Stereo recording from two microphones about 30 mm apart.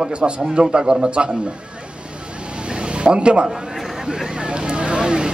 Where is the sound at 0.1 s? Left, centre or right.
Right.